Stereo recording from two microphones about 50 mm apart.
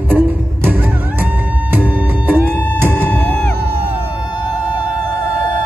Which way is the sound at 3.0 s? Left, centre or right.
Left.